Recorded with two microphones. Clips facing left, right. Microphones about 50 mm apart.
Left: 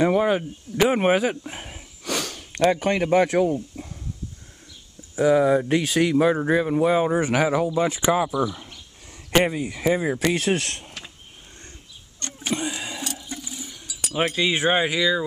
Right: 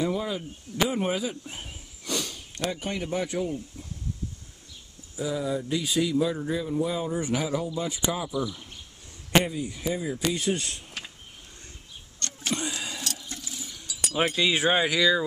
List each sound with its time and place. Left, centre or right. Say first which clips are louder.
0.0 s speech: left 9 dB; left
5.1 s speech: left 11 dB; left
9.4 s speech: left 7 dB; left
12.2 s vehicle: left 4 dB; centre
12.8 s toilet flush: left 3 dB; centre
13.8 s chink: left 2 dB; centre
14.4 s speech: left 3 dB; left